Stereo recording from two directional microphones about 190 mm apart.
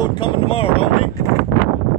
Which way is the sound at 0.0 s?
25° left (ahead or behind).